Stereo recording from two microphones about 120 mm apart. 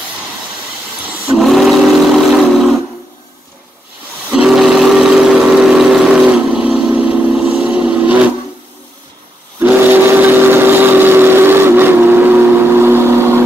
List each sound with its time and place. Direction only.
1.2 s train: centre (ahead or behind)
4.3 s vehicle: 5° right (ahead or behind)
9.6 s steam whistle: 15° right (ahead or behind)